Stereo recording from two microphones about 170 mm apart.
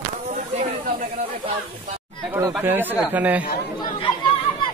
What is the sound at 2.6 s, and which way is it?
Speech, 10° right (ahead or behind).